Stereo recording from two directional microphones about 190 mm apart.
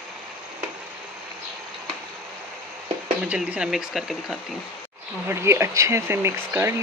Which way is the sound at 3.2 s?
5° right (ahead or behind).